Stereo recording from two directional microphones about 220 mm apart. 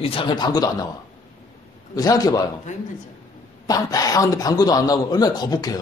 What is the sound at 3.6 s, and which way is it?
A man's voice, 15° left (ahead or behind).